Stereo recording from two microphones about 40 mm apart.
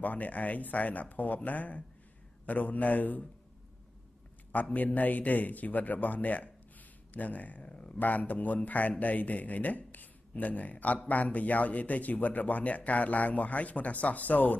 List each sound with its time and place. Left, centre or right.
0.0 s speech: left
4.7 s speech: left
7.6 s speech: left
8.0 s speech: left